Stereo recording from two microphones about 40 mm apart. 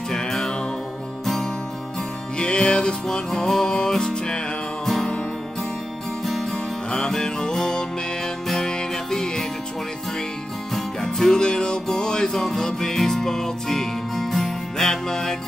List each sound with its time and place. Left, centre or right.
0.1 s music: centre
2.3 s music: left
4.8 s music: centre
6.5 s music: centre
10.7 s music: centre